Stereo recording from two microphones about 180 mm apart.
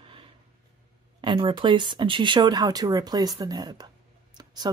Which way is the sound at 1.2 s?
25° right (ahead or behind).